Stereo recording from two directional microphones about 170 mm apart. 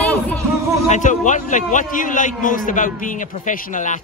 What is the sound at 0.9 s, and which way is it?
A man's voice, 45° left (ahead or behind).